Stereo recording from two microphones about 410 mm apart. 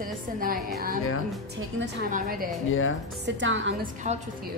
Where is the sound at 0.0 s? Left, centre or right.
Centre.